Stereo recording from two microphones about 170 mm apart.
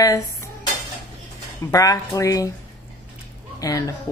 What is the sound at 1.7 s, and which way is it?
Speech, 20° left (ahead or behind).